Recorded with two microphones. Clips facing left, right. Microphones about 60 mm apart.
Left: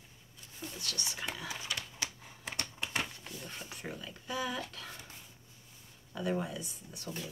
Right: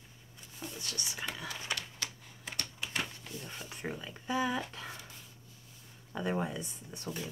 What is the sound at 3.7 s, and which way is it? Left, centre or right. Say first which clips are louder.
Speech: right 6 dB; centre.